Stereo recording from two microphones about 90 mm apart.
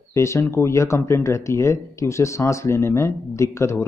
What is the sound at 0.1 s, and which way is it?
Speech, 30° left (ahead or behind).